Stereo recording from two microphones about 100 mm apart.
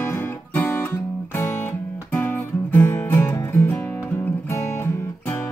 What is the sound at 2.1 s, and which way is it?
Music, 20° left (ahead or behind).